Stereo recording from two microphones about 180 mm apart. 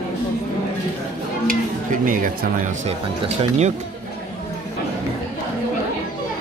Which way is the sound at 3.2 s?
35° right (ahead or behind).